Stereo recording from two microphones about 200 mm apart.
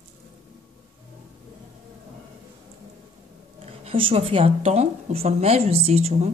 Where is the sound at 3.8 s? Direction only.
25° right (ahead or behind).